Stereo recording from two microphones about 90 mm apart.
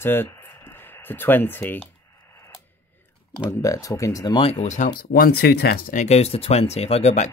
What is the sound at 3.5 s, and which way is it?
Speech, 40° left (ahead or behind).